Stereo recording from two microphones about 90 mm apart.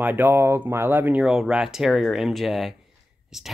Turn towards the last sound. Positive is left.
turn(degrees=-5)  # may be behind; listen again after turning